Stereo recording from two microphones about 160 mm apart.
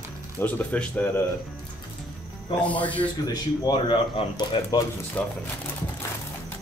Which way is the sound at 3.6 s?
30° left (ahead or behind).